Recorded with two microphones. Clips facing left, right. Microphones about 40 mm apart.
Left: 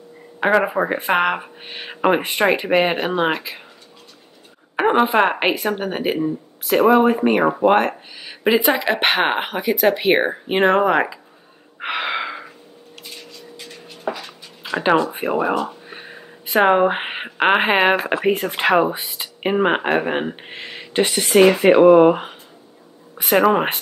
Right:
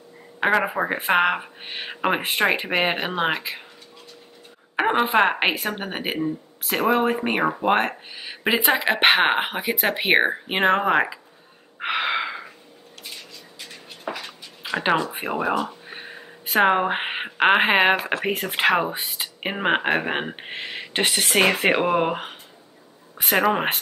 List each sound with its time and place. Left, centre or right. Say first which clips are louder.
0.4 s speech: left 4 dB; centre
4.7 s speech: left 3 dB; centre
9.7 s speech: left 6 dB; right
11.8 s gasp: left 1 dB; centre
14.6 s speech: left 4 dB; centre
15.6 s a sound: left 3 dB; centre
18.2 s speech: left 3 dB; centre
20.9 s speech: left 5 dB; right
21.6 s speech: left 10 dB; centre